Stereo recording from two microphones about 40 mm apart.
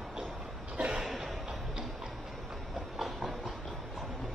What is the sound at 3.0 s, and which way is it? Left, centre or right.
Train, centre.